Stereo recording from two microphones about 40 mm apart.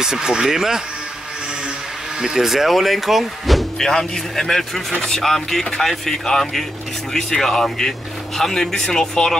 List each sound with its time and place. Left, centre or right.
0.0 s speech: centre
2.2 s speech: centre
3.7 s speech: centre
5.2 s speech: centre